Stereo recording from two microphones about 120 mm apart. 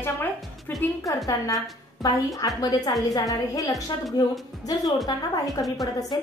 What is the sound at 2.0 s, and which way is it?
A woman's voice, 30° left (ahead or behind).